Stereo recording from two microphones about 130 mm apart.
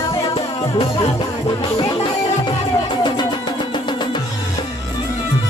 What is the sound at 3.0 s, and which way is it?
Music, 35° left (ahead or behind).